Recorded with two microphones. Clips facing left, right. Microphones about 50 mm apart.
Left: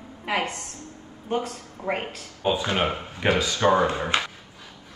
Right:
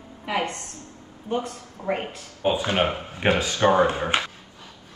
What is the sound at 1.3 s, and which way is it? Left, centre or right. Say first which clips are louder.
Speech: even; left.